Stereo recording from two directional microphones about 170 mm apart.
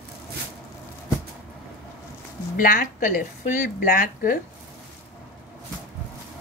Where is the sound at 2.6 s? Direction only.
50° left (ahead or behind).